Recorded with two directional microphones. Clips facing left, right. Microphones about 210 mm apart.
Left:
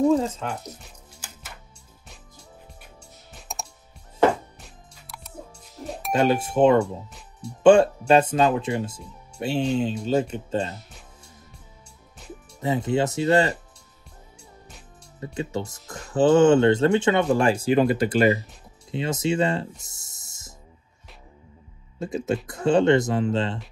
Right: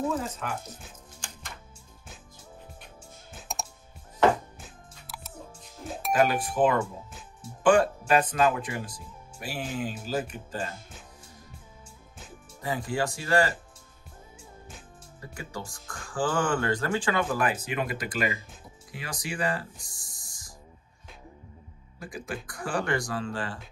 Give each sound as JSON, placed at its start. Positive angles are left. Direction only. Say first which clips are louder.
{"t": 0.4, "sound": "speech", "louder": "left 3 dB", "side_deg": 25}
{"t": 0.7, "sound": "music", "louder": "even", "side_deg": 5}
{"t": 3.3, "sound": "computer keyboard", "louder": "even", "side_deg": 0}
{"t": 4.6, "sound": "music", "louder": "even", "side_deg": 0}
{"t": 6.1, "sound": "speech", "louder": "left 4 dB", "side_deg": 25}
{"t": 6.8, "sound": "speech", "louder": "left 7 dB", "side_deg": 0}
{"t": 7.6, "sound": "speech", "louder": "left 7 dB", "side_deg": 25}
{"t": 12.5, "sound": "speech", "louder": "left 7 dB", "side_deg": 25}
{"t": 15.1, "sound": "speech", "louder": "left 10 dB", "side_deg": 25}
{"t": 18.9, "sound": "music", "louder": "left 13 dB", "side_deg": 25}
{"t": 22.0, "sound": "speech", "louder": "left 11 dB", "side_deg": 25}